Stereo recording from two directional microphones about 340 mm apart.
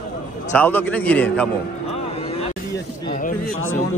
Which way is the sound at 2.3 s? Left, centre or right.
Centre.